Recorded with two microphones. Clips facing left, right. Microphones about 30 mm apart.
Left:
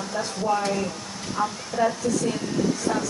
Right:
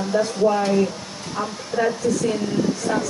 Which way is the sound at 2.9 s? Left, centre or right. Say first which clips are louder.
Right 3 dB; centre.